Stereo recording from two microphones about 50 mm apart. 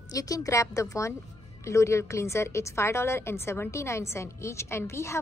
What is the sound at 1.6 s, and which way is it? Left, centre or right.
A woman's voice, left.